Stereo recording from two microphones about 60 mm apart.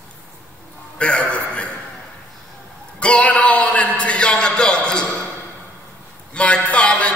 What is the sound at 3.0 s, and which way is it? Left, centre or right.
A man's voice, centre.